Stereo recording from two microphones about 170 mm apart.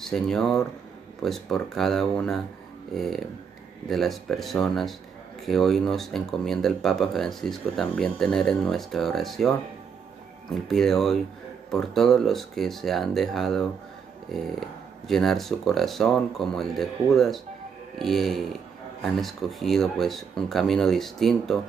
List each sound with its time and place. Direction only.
0.0 s speech: centre (ahead or behind)
10.5 s speech: centre (ahead or behind)